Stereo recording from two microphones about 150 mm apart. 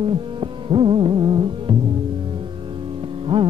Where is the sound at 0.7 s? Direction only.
35° right (ahead or behind).